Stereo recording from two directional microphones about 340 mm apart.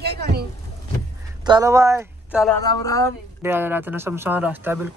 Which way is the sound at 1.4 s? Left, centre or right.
Centre.